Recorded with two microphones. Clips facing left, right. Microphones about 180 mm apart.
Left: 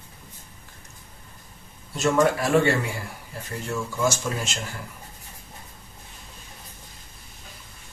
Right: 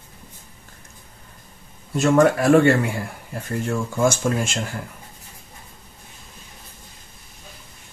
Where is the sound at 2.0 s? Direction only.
55° right (ahead or behind).